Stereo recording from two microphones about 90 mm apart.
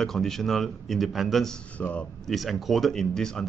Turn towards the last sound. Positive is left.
turn(degrees=5)  # may be behind; listen again after turning